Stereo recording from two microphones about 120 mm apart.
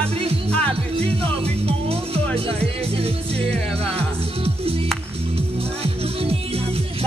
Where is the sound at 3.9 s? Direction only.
55° right (ahead or behind).